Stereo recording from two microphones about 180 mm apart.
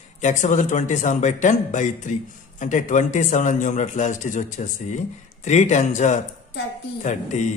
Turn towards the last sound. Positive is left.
turn(degrees=40)  # may be behind; listen again after turning